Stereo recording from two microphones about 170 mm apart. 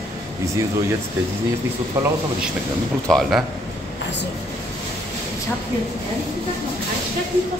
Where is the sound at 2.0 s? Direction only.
15° right (ahead or behind).